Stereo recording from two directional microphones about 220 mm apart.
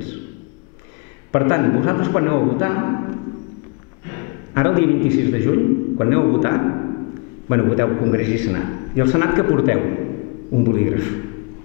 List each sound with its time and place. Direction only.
1.3 s a man's voice: 20° left (ahead or behind)